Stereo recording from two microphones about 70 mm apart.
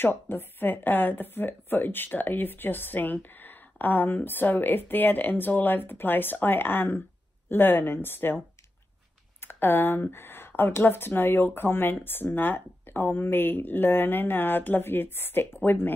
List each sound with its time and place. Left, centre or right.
0.0 s speech: left